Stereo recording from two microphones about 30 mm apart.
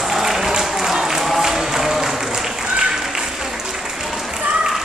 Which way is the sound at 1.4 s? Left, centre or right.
Centre.